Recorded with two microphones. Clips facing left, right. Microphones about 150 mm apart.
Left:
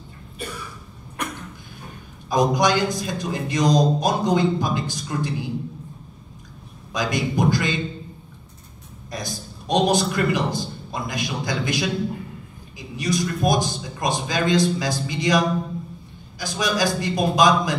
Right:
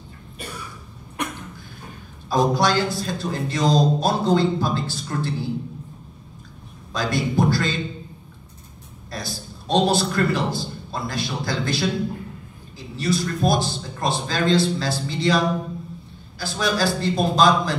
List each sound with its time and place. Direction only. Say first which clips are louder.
2.2 s a man's voice: even; 15° left (ahead or behind)
6.9 s a man's voice: even; 15° left (ahead or behind)
9.1 s a man's voice: left 1 dB; 20° left (ahead or behind)